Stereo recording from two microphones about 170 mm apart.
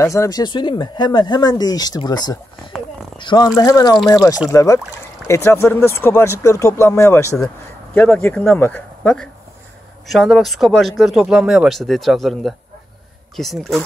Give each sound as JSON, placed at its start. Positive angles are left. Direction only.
{"t": 0.0, "sound": "speech", "side_deg": 20}